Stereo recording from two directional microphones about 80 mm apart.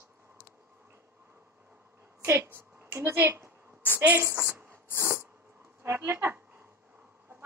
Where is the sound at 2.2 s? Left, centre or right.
Right.